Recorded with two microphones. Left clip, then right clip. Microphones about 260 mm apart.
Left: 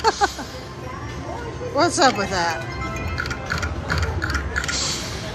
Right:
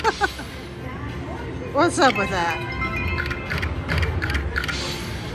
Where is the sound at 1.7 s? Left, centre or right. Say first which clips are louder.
Even; centre.